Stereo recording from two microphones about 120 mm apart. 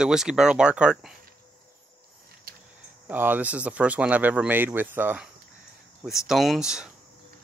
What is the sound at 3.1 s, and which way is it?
Speech, 15° right (ahead or behind).